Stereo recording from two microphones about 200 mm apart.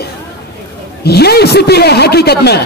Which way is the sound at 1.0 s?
55° left (ahead or behind).